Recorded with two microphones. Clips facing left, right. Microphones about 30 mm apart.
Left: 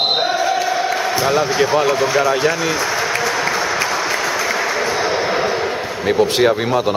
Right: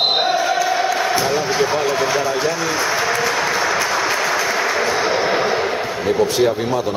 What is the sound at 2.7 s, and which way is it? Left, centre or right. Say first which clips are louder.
Speech: even; centre.